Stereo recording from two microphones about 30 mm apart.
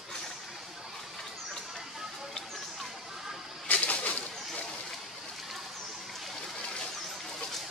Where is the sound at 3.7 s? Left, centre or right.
Left.